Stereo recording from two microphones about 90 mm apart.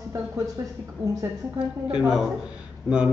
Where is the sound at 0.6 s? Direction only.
35° right (ahead or behind).